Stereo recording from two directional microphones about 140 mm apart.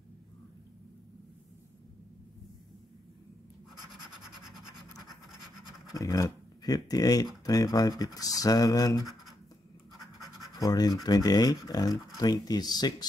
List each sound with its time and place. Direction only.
5.9 s speech: 25° left (ahead or behind)
10.6 s speech: 25° left (ahead or behind)